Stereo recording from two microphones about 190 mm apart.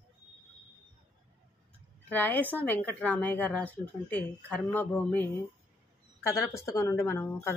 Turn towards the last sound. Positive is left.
turn(degrees=15)  # may be behind; listen again after turning